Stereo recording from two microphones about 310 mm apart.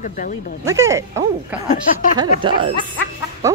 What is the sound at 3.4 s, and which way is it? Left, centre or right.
Fowl, centre.